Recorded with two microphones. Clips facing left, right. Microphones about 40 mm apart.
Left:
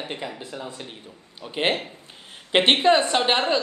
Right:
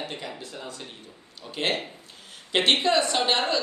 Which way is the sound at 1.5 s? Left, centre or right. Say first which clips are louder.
Left 4 dB; left.